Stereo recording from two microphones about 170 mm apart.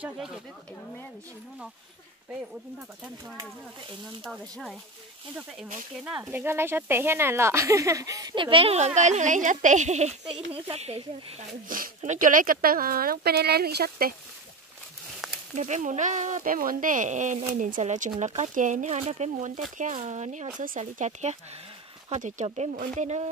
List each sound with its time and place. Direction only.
4.2 s speech: centre (ahead or behind)
6.0 s speech: 10° right (ahead or behind); by 11.4 s 35° right (ahead or behind)
11.7 s speech: 50° right (ahead or behind)
15.1 s a sound: centre (ahead or behind)
15.5 s speech: 45° right (ahead or behind)